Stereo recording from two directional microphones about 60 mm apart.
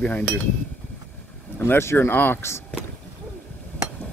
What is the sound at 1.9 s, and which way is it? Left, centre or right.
Speech, left.